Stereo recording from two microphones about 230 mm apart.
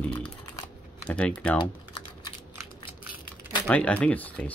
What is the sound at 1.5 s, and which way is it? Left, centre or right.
Typing, centre.